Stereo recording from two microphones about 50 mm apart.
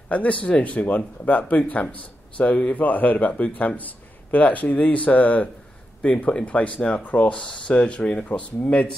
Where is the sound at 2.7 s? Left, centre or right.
Left.